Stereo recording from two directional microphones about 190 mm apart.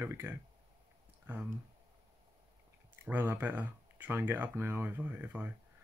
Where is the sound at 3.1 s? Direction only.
10° right (ahead or behind).